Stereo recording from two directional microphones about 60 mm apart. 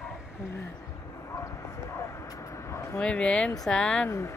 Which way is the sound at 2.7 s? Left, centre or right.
Left.